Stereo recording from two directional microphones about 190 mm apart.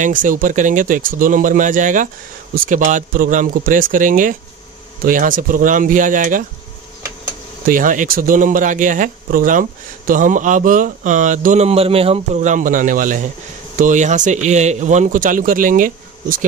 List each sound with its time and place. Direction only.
0.0 s speech: 45° right (ahead or behind)
7.6 s speech: 45° right (ahead or behind)